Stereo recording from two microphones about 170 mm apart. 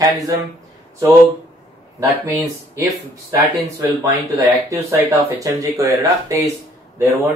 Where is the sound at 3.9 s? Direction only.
15° right (ahead or behind).